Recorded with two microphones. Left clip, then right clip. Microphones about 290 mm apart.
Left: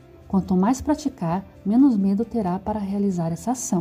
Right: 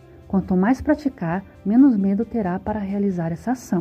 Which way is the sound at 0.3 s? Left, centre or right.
Centre.